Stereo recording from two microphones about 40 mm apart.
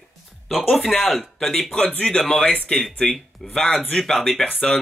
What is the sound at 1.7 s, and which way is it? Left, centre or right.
Speech, left.